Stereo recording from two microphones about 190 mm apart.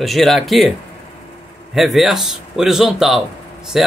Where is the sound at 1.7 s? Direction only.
Centre (ahead or behind).